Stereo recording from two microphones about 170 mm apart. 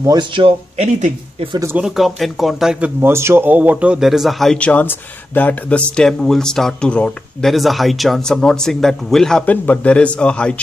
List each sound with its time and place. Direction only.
0.0 s speech: 25° right (ahead or behind); by 1.5 s 40° right (ahead or behind)
1.5 s speech: 20° right (ahead or behind)
1.8 s speech: 5° right (ahead or behind)